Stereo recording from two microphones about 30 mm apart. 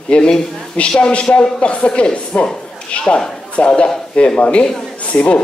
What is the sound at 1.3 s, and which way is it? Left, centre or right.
Speech, left.